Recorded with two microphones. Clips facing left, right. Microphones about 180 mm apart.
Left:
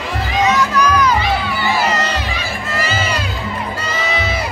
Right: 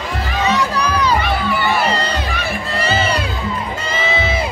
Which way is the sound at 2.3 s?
60° right (ahead or behind).